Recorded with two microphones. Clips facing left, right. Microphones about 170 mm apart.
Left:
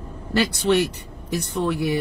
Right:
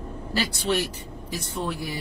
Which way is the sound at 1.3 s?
60° left (ahead or behind).